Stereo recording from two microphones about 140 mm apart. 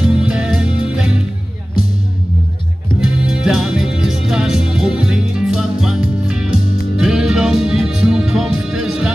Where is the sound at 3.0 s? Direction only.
5° right (ahead or behind).